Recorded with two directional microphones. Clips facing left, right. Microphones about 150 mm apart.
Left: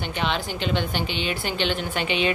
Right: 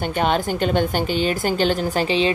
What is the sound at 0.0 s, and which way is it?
A woman's voice, 45° right (ahead or behind).